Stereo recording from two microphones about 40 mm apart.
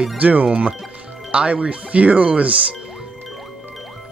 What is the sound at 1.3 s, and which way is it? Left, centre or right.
Speech, right.